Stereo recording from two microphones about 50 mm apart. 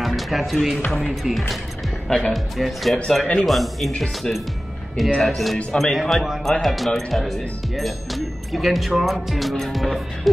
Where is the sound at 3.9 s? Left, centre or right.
Centre.